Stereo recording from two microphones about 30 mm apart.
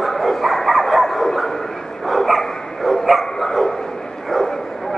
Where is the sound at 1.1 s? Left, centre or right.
Centre.